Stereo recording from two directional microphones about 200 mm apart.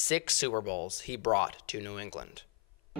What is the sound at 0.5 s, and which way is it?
Speech, 40° left (ahead or behind).